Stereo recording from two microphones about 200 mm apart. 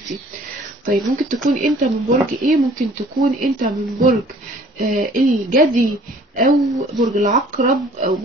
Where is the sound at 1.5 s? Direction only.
40° right (ahead or behind).